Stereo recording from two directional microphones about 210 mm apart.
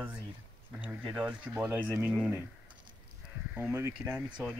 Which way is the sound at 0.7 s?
5° right (ahead or behind).